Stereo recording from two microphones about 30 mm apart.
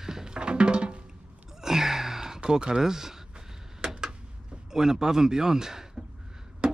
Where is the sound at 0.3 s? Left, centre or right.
Right.